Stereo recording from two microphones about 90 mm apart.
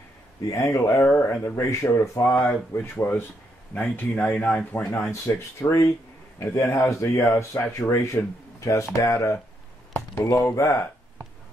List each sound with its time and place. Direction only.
0.5 s speech: 35° left (ahead or behind); by 4.8 s 15° left (ahead or behind)
5.3 s speech: 35° left (ahead or behind)